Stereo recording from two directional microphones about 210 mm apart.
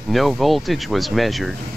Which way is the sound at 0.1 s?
Centre (ahead or behind).